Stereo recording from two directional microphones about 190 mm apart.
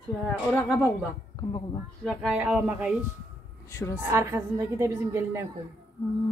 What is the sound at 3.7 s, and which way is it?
Speech, 15° left (ahead or behind).